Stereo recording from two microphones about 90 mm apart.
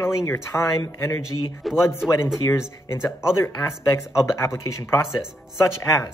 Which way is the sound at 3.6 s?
35° left (ahead or behind).